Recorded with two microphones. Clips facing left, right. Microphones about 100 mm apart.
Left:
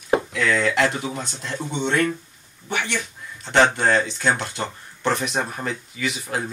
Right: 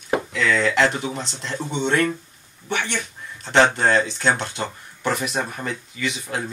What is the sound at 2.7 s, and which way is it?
Speech, 30° right (ahead or behind).